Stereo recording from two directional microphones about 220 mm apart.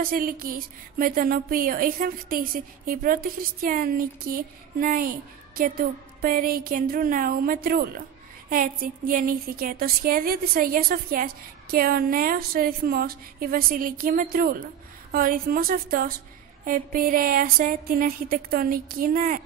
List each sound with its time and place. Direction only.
0.0 s a woman's voice: 40° right (ahead or behind)